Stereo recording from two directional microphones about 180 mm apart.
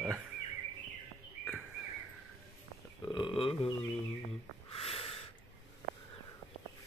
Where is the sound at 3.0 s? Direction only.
30° left (ahead or behind).